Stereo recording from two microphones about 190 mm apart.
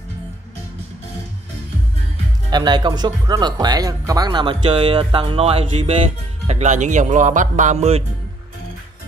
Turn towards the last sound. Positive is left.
turn(degrees=-35)  # may be behind; listen again after turning